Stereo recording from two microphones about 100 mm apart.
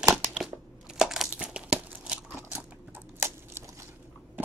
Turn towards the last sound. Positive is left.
turn(degrees=-25)  # may be behind; listen again after turning